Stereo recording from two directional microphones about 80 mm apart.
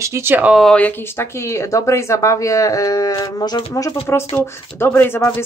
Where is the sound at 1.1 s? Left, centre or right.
Left.